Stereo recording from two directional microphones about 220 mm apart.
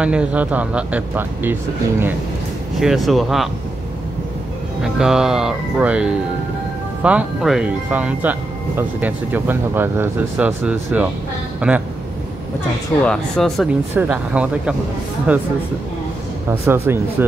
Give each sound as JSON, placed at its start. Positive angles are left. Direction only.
{"t": 0.0, "sound": "speech", "side_deg": -5}
{"t": 4.8, "sound": "speech", "side_deg": -5}
{"t": 13.0, "sound": "speech", "side_deg": 5}
{"t": 16.4, "sound": "speech", "side_deg": -10}